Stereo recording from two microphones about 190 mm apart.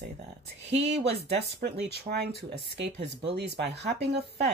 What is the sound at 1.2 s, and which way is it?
Speech, 60° right (ahead or behind).